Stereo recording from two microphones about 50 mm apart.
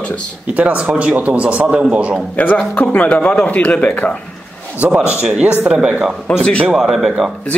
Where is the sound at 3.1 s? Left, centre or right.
Left.